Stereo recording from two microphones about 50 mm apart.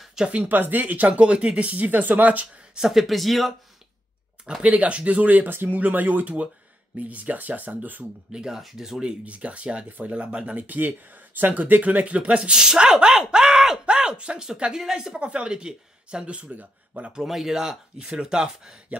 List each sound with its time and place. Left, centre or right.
0.0 s a sound: centre
0.5 s speech: right
2.7 s speech: centre
4.6 s speech: right
5.5 s speech: right
5.8 s speech: right
8.3 s speech: centre
9.0 s speech: right
15.1 s speech: right
17.3 s speech: centre